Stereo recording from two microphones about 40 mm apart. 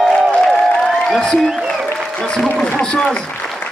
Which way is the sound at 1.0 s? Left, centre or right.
Centre.